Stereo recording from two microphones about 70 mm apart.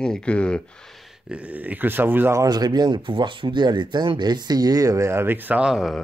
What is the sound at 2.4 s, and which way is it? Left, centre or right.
Speech, right.